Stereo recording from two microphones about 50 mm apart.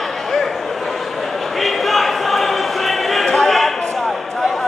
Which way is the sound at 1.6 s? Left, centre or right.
Centre.